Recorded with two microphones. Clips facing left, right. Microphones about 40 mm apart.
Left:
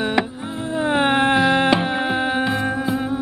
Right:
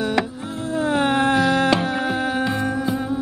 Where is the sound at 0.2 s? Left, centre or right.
Centre.